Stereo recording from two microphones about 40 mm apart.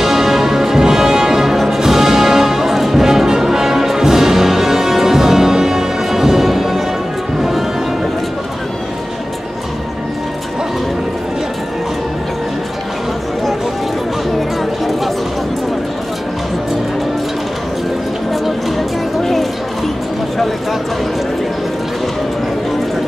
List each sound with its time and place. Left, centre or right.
0.0 s music: centre
18.3 s music: centre